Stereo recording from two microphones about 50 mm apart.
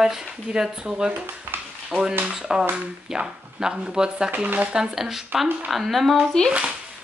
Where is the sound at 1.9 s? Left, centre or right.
Right.